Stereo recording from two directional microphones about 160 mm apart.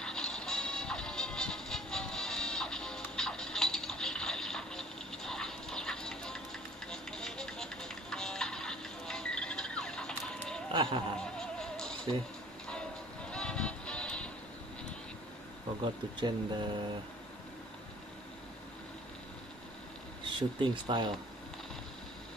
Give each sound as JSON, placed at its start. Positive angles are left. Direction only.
{"t": 0.0, "sound": "music", "side_deg": 5}
{"t": 10.7, "sound": "a sound", "side_deg": -30}
{"t": 11.1, "sound": "neigh", "side_deg": 5}
{"t": 13.3, "sound": "vehicle", "side_deg": 5}
{"t": 15.8, "sound": "speech", "side_deg": -30}
{"t": 20.2, "sound": "speech", "side_deg": -30}